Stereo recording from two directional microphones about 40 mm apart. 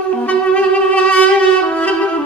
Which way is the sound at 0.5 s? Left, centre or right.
Left.